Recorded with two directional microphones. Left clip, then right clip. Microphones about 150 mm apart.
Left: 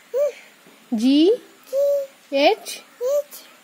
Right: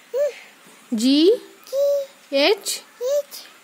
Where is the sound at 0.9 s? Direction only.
25° right (ahead or behind).